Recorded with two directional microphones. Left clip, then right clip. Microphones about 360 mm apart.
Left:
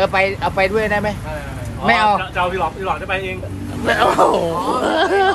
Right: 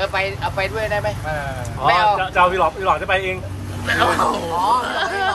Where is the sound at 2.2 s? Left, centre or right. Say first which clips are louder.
Right 4 dB; centre.